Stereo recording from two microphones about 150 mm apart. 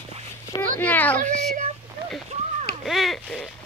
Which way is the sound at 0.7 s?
10° left (ahead or behind).